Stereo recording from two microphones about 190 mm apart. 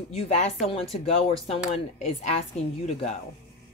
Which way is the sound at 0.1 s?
35° left (ahead or behind).